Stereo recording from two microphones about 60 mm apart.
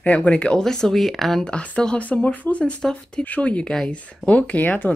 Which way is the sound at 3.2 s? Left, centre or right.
Left.